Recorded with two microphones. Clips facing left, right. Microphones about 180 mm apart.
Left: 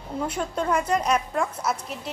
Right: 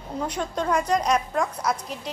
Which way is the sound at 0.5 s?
5° left (ahead or behind).